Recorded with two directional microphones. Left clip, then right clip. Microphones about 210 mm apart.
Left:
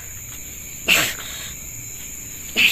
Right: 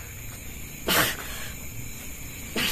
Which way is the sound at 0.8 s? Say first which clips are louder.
Left 6 dB; 15° right (ahead or behind).